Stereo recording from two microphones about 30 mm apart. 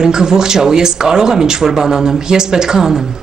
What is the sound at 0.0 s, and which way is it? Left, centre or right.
Speech, right.